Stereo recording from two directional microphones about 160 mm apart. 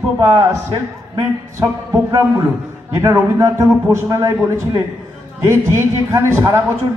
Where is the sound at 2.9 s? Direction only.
20° right (ahead or behind).